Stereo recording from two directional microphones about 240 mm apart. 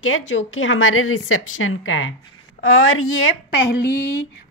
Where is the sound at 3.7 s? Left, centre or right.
Left.